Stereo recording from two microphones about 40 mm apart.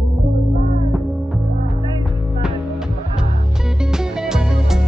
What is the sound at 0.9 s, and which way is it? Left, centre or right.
Music, centre.